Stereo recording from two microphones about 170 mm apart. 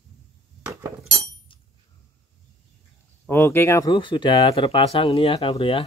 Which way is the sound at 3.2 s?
15° left (ahead or behind).